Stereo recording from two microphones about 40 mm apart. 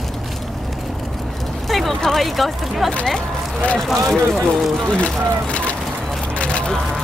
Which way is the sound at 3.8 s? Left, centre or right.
Centre.